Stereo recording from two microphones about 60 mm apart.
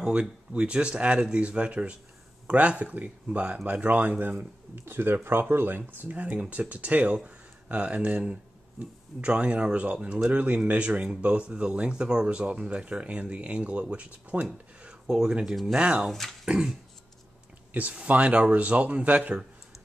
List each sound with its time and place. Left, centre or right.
0.0 s speech: centre
16.1 s speech: centre
16.4 s a sound: centre
17.7 s speech: right